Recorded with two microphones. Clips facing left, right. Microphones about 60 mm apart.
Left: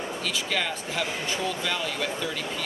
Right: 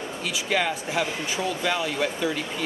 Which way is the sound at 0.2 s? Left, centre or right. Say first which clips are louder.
Right 5 dB; centre.